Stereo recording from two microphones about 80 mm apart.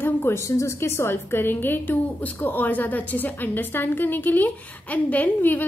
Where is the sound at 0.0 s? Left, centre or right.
Left.